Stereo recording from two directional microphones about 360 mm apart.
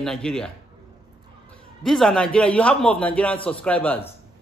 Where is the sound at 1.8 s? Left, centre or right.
Centre.